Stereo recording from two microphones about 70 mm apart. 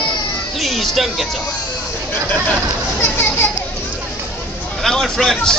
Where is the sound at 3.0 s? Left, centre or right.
Left.